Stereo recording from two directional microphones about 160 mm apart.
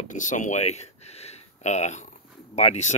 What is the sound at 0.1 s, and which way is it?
Speech, 50° left (ahead or behind).